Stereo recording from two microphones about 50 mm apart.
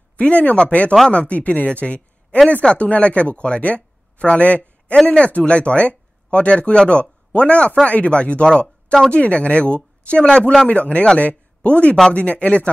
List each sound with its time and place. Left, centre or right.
0.2 s a man's voice: left